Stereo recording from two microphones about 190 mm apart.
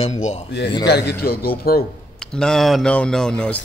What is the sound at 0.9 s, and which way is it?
Speech, 60° left (ahead or behind).